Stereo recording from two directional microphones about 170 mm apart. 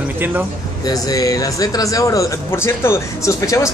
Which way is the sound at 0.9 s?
20° left (ahead or behind).